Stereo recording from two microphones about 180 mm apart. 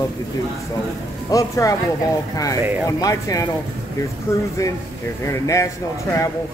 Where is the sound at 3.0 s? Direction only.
20° left (ahead or behind).